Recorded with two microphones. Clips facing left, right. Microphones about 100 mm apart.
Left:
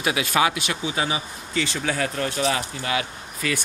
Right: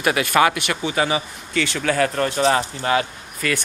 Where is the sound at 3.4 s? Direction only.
55° right (ahead or behind).